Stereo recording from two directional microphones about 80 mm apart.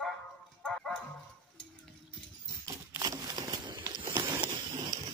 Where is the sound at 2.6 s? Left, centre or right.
Right.